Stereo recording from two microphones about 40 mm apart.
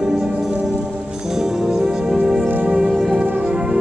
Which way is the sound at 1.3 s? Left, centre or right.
Centre.